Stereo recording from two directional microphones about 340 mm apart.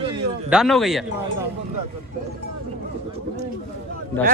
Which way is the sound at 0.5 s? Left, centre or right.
Centre.